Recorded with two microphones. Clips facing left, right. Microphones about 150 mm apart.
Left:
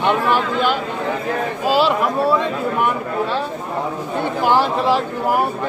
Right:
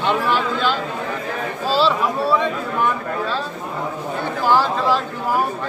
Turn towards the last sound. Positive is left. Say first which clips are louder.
# left 1 dB
turn(degrees=20)  # may be behind; listen again after turning